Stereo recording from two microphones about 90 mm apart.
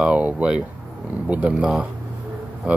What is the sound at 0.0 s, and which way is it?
Speech, 15° right (ahead or behind).